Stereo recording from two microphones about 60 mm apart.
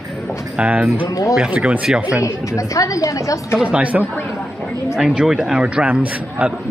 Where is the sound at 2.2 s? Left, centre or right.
Left.